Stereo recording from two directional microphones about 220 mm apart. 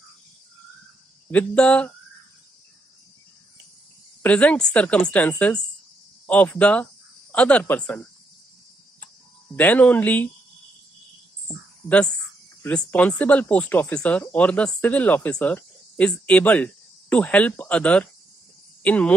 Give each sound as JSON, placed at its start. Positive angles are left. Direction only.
{"t": 1.3, "sound": "a woman's voice", "side_deg": 5}
{"t": 4.2, "sound": "a woman's voice", "side_deg": 5}
{"t": 9.6, "sound": "speech", "side_deg": 5}
{"t": 11.4, "sound": "a sound", "side_deg": 5}
{"t": 12.6, "sound": "speech", "side_deg": 5}